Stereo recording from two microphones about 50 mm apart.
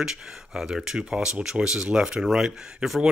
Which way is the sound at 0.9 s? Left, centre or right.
Centre.